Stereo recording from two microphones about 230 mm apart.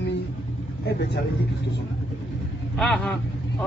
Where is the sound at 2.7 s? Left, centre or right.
Centre.